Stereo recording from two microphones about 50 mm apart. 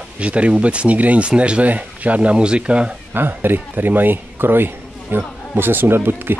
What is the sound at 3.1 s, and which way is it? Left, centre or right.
Speech, right.